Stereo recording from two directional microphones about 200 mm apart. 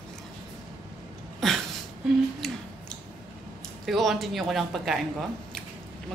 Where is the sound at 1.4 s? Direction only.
Centre (ahead or behind).